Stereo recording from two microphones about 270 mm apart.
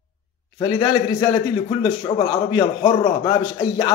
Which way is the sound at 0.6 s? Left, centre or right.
Centre.